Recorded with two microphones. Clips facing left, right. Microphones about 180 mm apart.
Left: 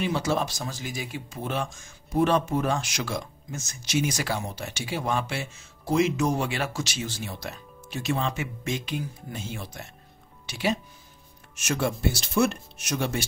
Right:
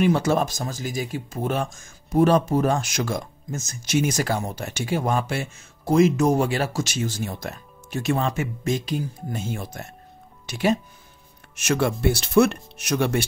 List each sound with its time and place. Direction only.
0.0 s speech: 50° right (ahead or behind)
11.5 s speech: 70° right (ahead or behind)